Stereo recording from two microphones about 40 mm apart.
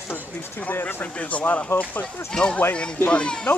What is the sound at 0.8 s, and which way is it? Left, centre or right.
Speech, left.